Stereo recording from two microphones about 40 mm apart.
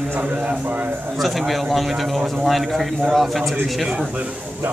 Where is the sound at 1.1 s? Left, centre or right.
Centre.